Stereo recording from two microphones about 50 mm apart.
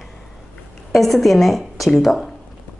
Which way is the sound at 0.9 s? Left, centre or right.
Centre.